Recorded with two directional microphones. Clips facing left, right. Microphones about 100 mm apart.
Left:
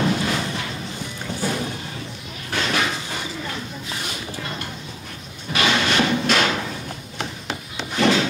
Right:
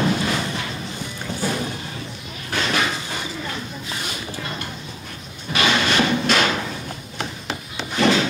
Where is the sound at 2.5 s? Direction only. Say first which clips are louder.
Right 1 dB; 25° right (ahead or behind).